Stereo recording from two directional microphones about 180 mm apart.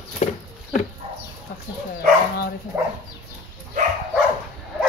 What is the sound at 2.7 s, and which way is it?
Dog, 15° right (ahead or behind).